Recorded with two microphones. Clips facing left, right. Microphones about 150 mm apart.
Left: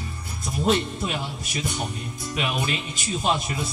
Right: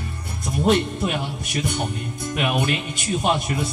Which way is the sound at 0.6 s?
55° right (ahead or behind).